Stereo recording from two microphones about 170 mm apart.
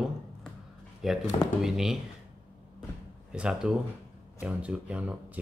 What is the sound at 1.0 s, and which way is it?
Speech, centre (ahead or behind).